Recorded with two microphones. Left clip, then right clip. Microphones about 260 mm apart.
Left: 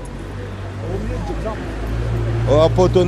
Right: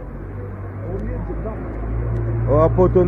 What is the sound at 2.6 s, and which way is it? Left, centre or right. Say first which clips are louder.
Speech: right 1 dB; left.